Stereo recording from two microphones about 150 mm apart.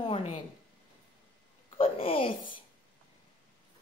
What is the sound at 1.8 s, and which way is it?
Speech, 40° left (ahead or behind).